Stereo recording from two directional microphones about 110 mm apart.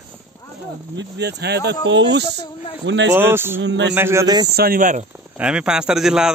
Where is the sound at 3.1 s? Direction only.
20° right (ahead or behind).